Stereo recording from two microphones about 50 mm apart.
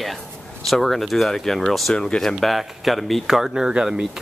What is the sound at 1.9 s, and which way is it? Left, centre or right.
Speech, centre.